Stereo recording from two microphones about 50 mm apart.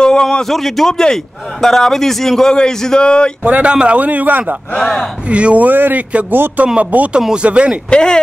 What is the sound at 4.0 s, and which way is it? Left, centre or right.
Speech, right.